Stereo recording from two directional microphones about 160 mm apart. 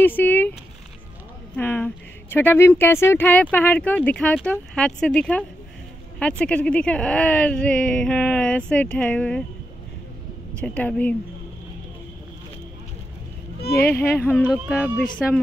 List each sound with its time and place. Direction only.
0.0 s speech: 10° left (ahead or behind)
1.6 s speech: 10° left (ahead or behind)
10.6 s speech: 5° left (ahead or behind)
13.6 s a sound: 80° left
14.1 s speech: 10° left (ahead or behind)
14.4 s speech: 5° right (ahead or behind)